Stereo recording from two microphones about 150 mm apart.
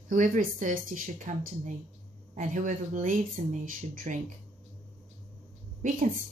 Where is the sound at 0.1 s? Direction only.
60° right (ahead or behind).